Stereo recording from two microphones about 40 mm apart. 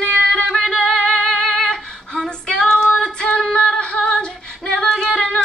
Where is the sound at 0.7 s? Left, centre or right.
Left.